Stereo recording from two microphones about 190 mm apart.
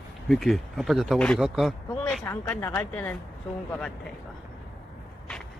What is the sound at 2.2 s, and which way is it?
Speech, 15° left (ahead or behind).